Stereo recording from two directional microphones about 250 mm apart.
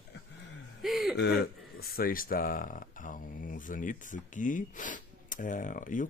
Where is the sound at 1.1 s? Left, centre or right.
Left.